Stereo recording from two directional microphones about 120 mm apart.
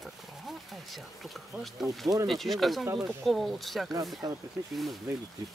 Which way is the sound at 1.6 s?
Centre (ahead or behind).